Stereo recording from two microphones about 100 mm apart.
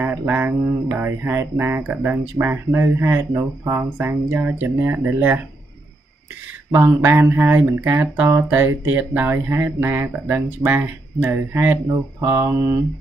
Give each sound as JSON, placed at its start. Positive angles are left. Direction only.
{"t": 0.0, "sound": "speech", "side_deg": -20}
{"t": 6.7, "sound": "speech", "side_deg": -25}